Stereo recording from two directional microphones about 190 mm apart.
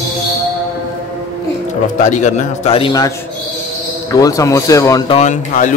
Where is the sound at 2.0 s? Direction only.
40° left (ahead or behind); by 3.1 s 20° left (ahead or behind).